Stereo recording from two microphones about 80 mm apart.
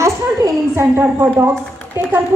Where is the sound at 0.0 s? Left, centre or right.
Right.